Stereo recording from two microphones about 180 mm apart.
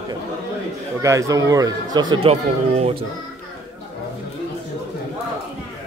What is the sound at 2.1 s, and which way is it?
Speech, 35° right (ahead or behind).